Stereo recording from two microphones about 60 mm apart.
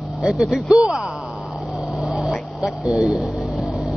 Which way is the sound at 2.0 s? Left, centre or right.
Centre.